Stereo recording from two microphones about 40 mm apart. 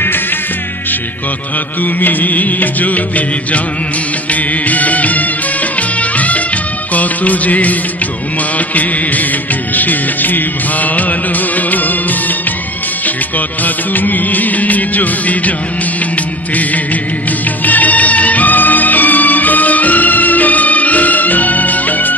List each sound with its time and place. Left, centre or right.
1.8 s music: left
6.9 s music of bollywood: left
8.5 s music: left
13.9 s music: left
17.6 s music: left